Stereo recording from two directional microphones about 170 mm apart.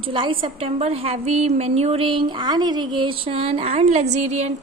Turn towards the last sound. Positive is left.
turn(degrees=-40)  # may be behind; listen again after turning